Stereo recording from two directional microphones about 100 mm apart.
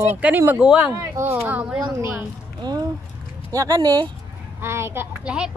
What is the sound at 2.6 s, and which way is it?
Speech, 45° right (ahead or behind).